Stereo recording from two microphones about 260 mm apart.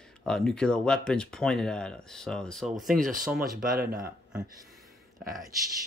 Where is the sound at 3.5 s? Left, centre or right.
Right.